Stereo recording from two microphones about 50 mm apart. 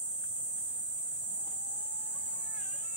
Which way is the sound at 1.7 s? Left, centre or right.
Right.